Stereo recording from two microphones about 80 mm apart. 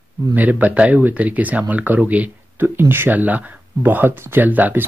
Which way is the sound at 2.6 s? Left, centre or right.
Right.